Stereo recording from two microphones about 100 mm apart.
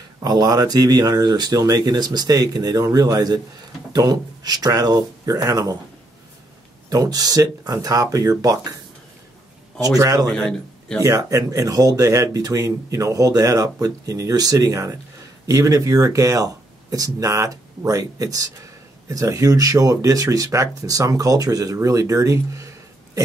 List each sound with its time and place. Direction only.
0.2 s speech: 40° right (ahead or behind)
6.9 s speech: 40° right (ahead or behind)
9.8 s speech: 35° right (ahead or behind)
10.2 s a man's voice: 5° left (ahead or behind)
11.0 s speech: 35° right (ahead or behind)